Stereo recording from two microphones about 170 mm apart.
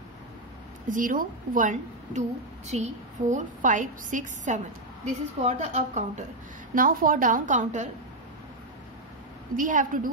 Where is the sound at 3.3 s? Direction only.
50° right (ahead or behind).